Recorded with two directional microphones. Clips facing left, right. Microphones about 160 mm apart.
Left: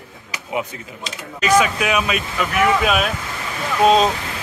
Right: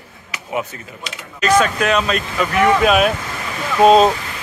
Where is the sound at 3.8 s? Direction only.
45° right (ahead or behind).